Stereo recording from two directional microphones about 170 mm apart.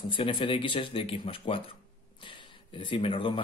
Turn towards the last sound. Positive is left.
turn(degrees=30)  # may be behind; listen again after turning